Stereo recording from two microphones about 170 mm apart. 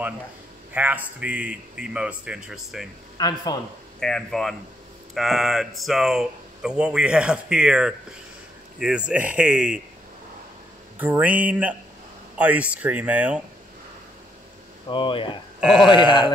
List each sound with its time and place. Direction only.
0.7 s speech: 10° right (ahead or behind)
3.2 s speech: 25° left (ahead or behind)
4.0 s speech: centre (ahead or behind)
11.0 s speech: 10° right (ahead or behind)
14.9 s speech: 30° left (ahead or behind)